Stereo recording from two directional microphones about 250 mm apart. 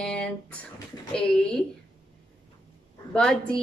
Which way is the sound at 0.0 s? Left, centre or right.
Centre.